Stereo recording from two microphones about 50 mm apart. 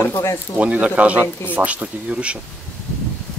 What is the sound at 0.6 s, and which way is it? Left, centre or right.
Speech, right.